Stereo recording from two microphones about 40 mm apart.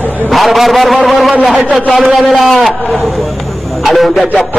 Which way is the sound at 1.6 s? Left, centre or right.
Right.